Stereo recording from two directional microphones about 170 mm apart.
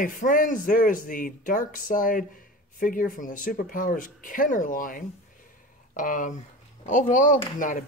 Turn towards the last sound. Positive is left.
turn(degrees=50)  # may be behind; listen again after turning